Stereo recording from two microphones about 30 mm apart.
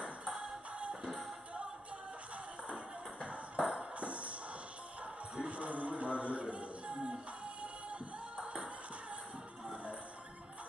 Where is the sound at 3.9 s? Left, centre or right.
Right.